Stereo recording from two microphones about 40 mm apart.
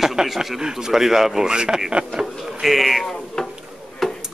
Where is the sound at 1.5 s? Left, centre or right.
Centre.